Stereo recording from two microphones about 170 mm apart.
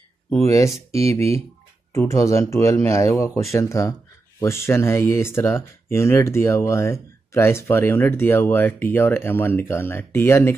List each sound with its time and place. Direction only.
0.3 s speech: 15° left (ahead or behind)
1.9 s speech: 15° left (ahead or behind)